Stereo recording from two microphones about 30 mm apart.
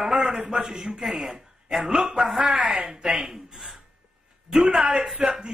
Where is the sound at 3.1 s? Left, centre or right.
Centre.